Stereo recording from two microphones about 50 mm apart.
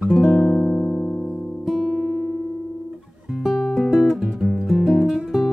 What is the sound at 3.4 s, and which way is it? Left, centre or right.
Music, centre.